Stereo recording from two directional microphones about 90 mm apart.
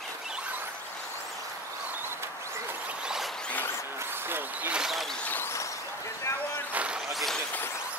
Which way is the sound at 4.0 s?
25° right (ahead or behind).